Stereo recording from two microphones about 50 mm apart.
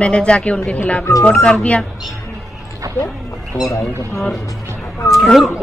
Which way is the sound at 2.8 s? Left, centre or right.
Right.